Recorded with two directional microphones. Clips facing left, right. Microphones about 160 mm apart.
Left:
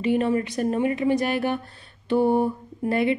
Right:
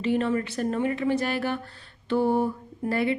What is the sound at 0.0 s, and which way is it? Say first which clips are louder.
Speech: left 3 dB; 15° left (ahead or behind).